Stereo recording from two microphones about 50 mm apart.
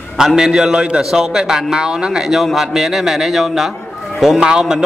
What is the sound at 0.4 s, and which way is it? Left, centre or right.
A man's voice, centre.